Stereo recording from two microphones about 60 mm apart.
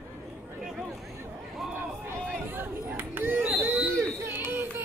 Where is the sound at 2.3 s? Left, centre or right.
Right.